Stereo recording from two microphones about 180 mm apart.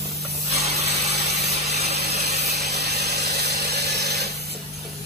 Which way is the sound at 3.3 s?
65° right (ahead or behind).